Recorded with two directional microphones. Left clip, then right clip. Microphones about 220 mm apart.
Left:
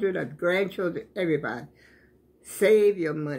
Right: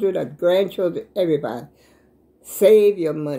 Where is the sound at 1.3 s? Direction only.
5° right (ahead or behind).